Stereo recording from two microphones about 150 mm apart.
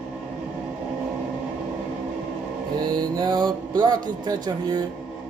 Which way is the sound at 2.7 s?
30° right (ahead or behind).